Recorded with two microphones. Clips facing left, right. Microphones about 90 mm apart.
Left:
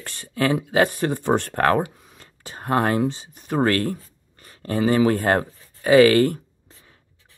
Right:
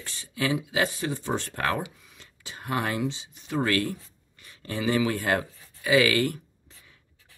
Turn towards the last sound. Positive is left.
turn(degrees=40)  # may be behind; listen again after turning